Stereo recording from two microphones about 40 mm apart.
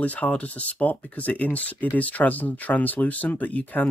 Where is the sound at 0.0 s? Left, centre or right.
Left.